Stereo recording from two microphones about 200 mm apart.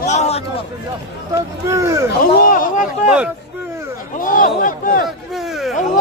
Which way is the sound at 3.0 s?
5° right (ahead or behind).